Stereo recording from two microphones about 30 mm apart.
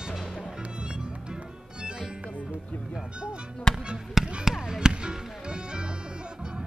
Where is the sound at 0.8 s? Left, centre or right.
Right.